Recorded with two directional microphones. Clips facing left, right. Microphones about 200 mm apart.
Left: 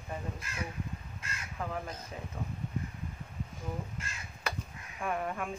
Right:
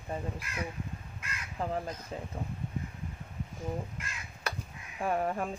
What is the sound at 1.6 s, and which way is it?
Speech, 30° right (ahead or behind).